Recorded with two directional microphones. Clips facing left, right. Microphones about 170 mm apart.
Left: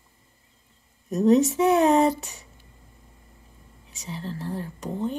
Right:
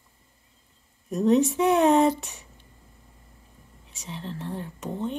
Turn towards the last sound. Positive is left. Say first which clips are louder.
# left 2 dB
turn(degrees=0)  # may be behind; listen again after turning